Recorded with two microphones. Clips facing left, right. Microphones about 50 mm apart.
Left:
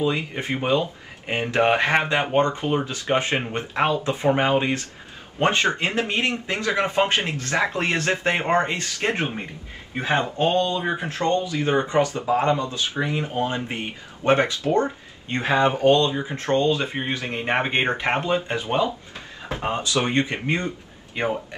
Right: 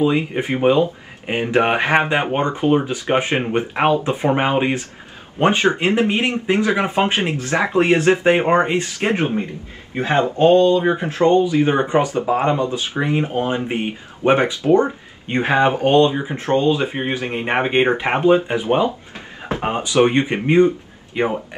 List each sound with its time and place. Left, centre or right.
0.0 s speech: right